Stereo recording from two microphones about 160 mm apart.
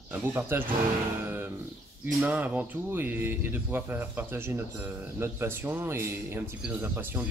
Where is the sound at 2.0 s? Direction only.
10° right (ahead or behind).